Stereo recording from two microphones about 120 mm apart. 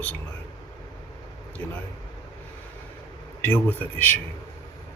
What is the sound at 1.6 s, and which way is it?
Speech, 15° left (ahead or behind).